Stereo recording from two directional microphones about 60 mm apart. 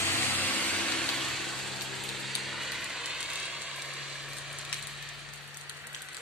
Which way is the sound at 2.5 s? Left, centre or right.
Centre.